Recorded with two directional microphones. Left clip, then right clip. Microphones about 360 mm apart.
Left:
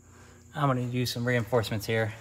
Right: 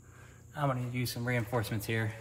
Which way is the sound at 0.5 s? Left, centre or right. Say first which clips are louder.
Left 6 dB; left.